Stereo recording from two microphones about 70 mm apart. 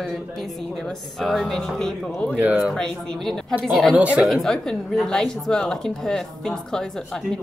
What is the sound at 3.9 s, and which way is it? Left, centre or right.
Speech, right.